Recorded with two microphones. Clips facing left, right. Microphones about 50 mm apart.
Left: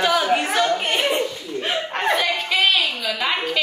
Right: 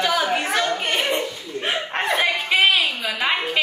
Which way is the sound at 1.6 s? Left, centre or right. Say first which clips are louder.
Left 1 dB; centre.